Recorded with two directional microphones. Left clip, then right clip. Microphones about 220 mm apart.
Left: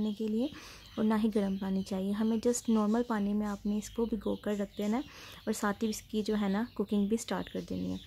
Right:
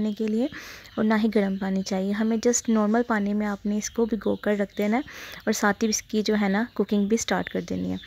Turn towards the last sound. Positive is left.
turn(degrees=-20)  # may be behind; listen again after turning